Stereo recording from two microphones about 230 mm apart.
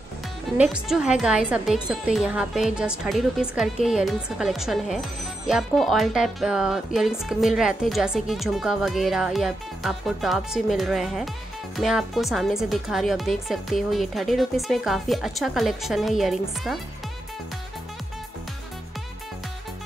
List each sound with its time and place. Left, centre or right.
0.6 s speech: centre